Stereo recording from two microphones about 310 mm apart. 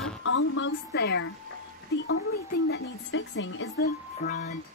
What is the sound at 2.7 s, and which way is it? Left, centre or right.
A woman's voice, left.